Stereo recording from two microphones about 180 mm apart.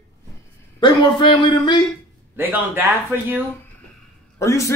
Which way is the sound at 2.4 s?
10° right (ahead or behind).